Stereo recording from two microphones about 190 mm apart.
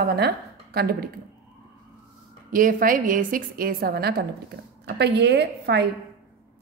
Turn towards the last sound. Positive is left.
turn(degrees=-60)  # may be behind; listen again after turning